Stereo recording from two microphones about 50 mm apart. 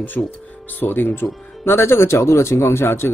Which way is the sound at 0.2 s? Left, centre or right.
Left.